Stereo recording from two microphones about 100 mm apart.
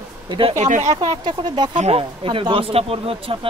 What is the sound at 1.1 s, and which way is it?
Speech, 50° right (ahead or behind).